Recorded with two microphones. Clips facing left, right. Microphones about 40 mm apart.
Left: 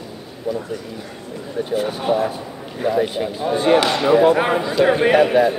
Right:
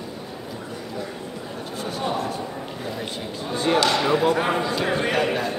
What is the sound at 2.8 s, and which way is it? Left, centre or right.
Speech, left.